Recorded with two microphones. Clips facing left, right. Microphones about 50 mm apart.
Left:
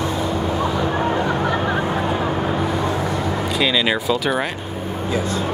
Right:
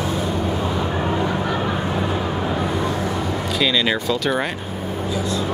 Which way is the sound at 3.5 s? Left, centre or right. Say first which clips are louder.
Even; centre.